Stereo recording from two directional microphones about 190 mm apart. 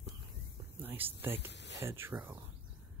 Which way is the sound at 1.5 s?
65° left (ahead or behind).